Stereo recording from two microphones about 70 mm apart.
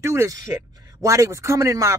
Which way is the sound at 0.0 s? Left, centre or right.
Right.